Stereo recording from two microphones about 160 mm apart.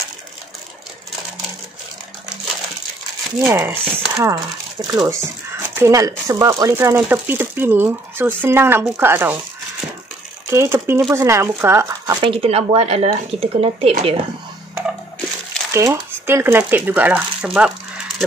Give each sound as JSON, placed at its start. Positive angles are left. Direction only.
{"t": 3.5, "sound": "speech", "side_deg": -15}
{"t": 10.5, "sound": "speech", "side_deg": -15}
{"t": 12.2, "sound": "speech", "side_deg": -35}
{"t": 15.7, "sound": "speech", "side_deg": -15}
{"t": 17.6, "sound": "a sound", "side_deg": -5}